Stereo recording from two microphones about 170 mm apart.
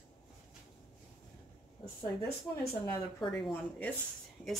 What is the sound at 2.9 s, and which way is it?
Speech, 20° left (ahead or behind).